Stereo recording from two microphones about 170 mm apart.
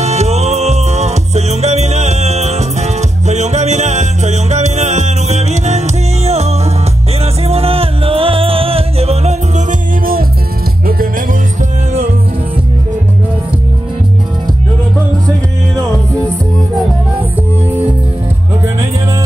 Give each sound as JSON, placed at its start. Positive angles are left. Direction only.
{"t": 0.0, "sound": "music", "side_deg": -40}
{"t": 10.9, "sound": "music", "side_deg": -60}